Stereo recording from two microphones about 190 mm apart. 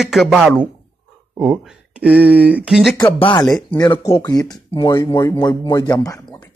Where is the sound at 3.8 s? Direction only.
25° left (ahead or behind).